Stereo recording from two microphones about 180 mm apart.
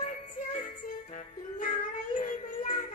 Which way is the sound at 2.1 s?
45° left (ahead or behind).